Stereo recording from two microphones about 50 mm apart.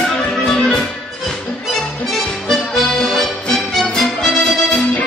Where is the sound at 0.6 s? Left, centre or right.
Centre.